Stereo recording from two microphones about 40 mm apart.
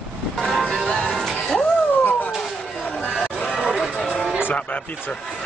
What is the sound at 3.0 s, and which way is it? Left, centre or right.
Chatter, left.